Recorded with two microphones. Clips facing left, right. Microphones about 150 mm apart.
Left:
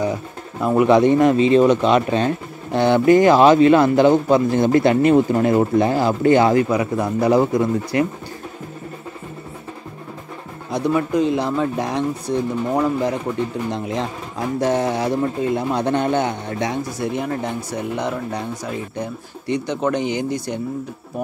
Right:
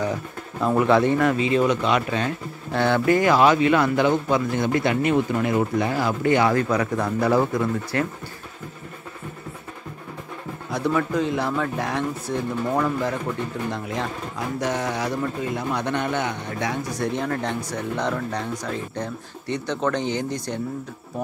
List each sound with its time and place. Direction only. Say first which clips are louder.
0.0 s speech: left 3 dB; 10° left (ahead or behind); by 2.3 s 30° left (ahead or behind)
2.7 s a man's voice: left 6 dB; 20° left (ahead or behind)
6.5 s speech: left 4 dB; 10° left (ahead or behind)
10.7 s speech: left 4 dB; 20° left (ahead or behind)
17.0 s speech: left 1 dB; 10° left (ahead or behind)